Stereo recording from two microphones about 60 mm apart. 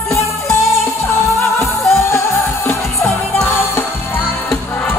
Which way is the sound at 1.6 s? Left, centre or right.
Centre.